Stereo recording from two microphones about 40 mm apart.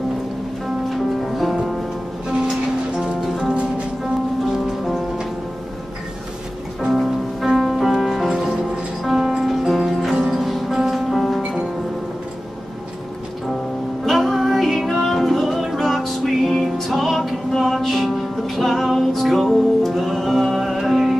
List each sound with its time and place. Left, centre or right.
0.8 s music: centre
2.2 s music: centre
3.2 s music: centre
7.4 s music: centre
7.8 s music: centre
14.0 s music: centre